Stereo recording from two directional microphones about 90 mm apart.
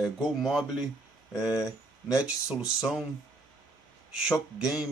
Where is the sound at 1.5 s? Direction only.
40° left (ahead or behind).